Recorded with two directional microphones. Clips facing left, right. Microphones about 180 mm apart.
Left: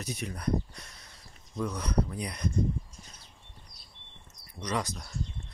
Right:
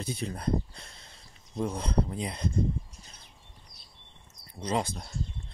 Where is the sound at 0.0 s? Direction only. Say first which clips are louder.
Right 2 dB; 30° right (ahead or behind).